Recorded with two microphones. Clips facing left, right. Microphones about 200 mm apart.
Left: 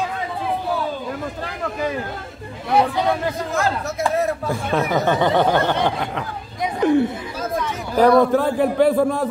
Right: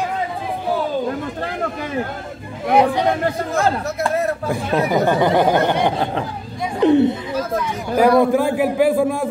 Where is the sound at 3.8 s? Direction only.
Centre (ahead or behind).